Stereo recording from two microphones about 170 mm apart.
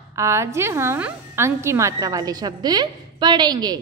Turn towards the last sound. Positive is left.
turn(degrees=-25)  # may be behind; listen again after turning